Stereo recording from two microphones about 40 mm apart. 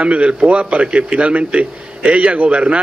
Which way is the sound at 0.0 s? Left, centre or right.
Right.